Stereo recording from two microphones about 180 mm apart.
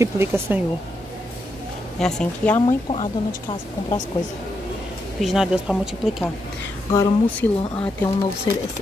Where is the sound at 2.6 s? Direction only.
30° left (ahead or behind).